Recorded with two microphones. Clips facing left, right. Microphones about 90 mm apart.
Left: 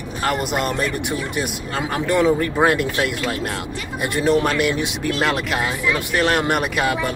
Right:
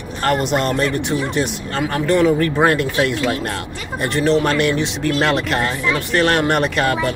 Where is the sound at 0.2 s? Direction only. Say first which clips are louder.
Right 4 dB; 5° left (ahead or behind).